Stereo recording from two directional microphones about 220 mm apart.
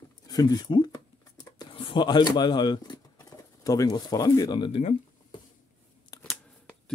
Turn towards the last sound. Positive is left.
turn(degrees=15)  # may be behind; listen again after turning